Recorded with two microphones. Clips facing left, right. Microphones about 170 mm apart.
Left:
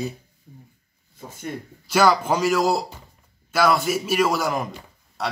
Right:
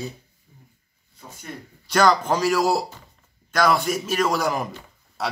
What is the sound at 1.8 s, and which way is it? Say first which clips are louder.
A man's voice: even; 5° left (ahead or behind).